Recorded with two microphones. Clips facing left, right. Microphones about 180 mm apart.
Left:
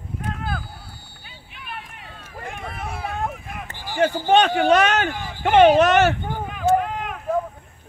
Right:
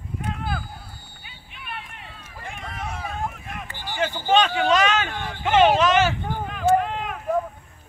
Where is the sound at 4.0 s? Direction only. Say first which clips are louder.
Left 4 dB; 60° left (ahead or behind).